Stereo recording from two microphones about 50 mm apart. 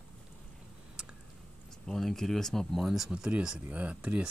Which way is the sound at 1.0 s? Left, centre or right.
Centre.